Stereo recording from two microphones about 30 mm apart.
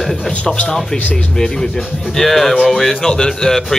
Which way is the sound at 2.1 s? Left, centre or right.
Centre.